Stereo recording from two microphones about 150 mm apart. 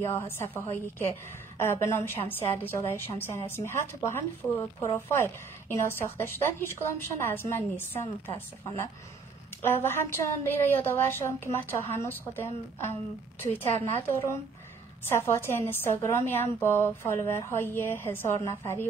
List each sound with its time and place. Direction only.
0.0 s a woman's voice: 15° left (ahead or behind)
9.6 s a woman's voice: 15° left (ahead or behind)